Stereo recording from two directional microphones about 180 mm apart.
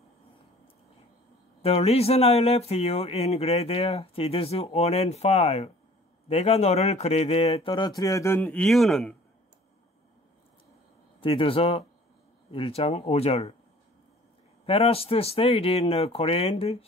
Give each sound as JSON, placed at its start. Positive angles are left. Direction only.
{"t": 1.6, "sound": "speech", "side_deg": 35}
{"t": 11.1, "sound": "speech", "side_deg": 30}
{"t": 14.7, "sound": "speech", "side_deg": 30}